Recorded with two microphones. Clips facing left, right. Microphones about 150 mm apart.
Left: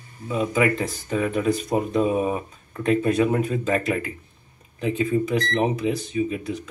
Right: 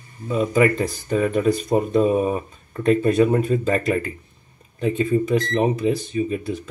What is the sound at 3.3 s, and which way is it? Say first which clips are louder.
Speech: right 3 dB; 35° right (ahead or behind).